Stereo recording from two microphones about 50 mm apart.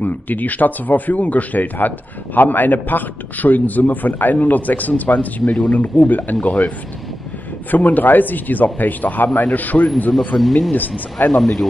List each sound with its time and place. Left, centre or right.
0.0 s a man's voice: left
7.7 s a man's voice: left
10.1 s speech: centre